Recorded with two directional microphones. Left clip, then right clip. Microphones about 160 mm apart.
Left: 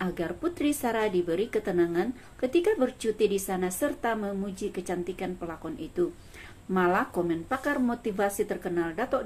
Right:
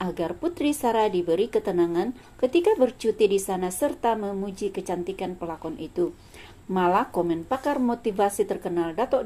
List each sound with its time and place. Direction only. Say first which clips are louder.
0.0 s a woman's voice: right 3 dB; 10° right (ahead or behind)